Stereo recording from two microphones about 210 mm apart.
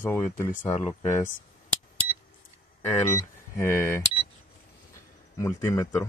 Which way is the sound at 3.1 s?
10° left (ahead or behind).